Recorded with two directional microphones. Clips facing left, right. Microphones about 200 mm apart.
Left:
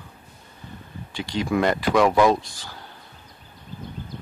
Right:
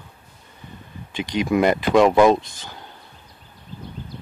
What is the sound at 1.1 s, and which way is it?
Speech, 20° right (ahead or behind).